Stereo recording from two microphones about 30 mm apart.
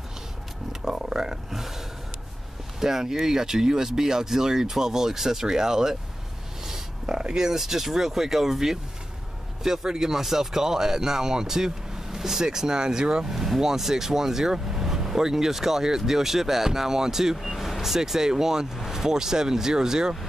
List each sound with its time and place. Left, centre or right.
0.8 s a sound: right
2.8 s a man's voice: centre
13.3 s speech: centre
17.4 s speech: centre; by 20.2 s right